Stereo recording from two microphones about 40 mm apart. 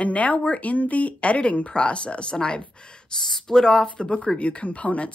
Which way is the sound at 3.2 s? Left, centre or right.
Centre.